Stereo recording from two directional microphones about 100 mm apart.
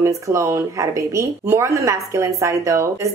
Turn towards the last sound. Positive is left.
turn(degrees=-30)  # may be behind; listen again after turning